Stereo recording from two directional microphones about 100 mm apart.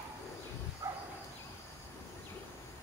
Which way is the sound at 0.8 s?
35° right (ahead or behind).